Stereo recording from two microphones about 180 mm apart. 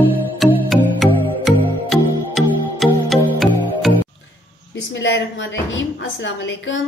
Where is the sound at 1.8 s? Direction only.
Centre (ahead or behind).